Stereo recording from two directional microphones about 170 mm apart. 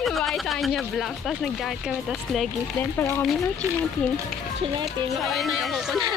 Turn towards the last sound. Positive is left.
turn(degrees=0)  # may be behind; listen again after turning